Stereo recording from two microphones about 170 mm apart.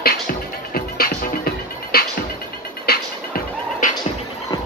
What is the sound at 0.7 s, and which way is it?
Music, 60° left (ahead or behind).